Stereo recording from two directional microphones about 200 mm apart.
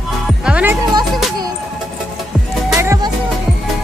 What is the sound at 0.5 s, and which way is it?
Music, 5° right (ahead or behind).